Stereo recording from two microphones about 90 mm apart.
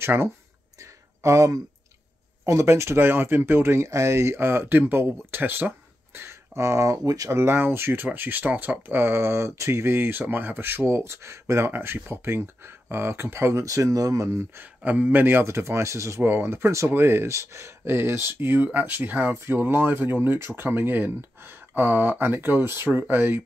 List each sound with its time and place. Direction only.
0.0 s speech: 30° right (ahead or behind)
0.7 s a sound: 35° right (ahead or behind)
2.4 s speech: 30° right (ahead or behind)
7.3 s speech: 25° right (ahead or behind)
14.8 s speech: 15° right (ahead or behind)